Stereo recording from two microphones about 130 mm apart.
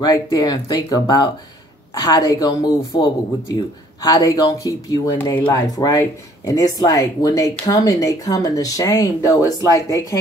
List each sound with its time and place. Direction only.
0.0 s speech: 30° left (ahead or behind)
5.1 s speech: 15° left (ahead or behind)
5.5 s speech: 30° left (ahead or behind)